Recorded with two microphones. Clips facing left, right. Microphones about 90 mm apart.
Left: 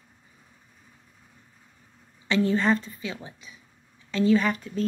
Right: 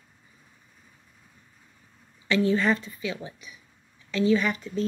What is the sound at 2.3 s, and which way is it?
A woman's voice, 35° left (ahead or behind).